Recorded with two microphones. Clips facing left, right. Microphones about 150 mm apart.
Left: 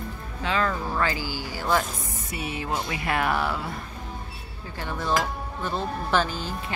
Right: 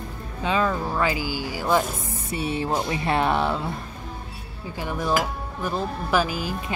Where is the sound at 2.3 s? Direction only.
30° right (ahead or behind).